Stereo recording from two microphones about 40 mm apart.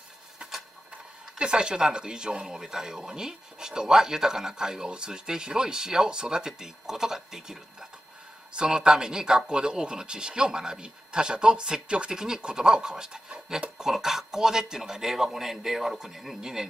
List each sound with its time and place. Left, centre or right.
0.4 s a sound: centre
1.4 s speech: right
8.5 s speech: centre